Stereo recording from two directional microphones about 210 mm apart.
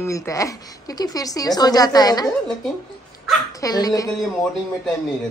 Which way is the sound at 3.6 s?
15° left (ahead or behind).